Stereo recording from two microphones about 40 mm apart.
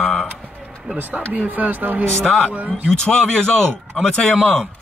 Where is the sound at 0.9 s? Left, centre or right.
Right.